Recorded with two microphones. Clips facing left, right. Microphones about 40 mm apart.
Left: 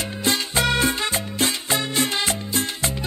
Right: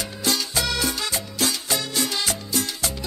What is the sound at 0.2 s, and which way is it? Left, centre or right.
Music, left.